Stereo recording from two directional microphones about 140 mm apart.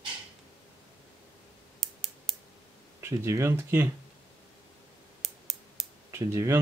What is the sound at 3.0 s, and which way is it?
Speech, 20° right (ahead or behind).